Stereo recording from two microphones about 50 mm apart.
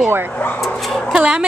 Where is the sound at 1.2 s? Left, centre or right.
Right.